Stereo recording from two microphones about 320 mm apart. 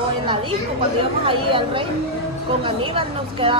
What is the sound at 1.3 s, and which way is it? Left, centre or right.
Speech, centre.